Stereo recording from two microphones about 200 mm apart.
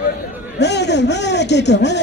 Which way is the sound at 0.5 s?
60° left (ahead or behind).